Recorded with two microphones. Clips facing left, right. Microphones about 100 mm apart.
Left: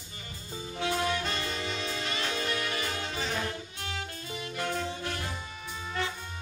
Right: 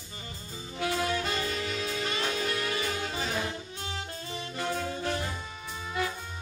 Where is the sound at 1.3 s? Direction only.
5° right (ahead or behind).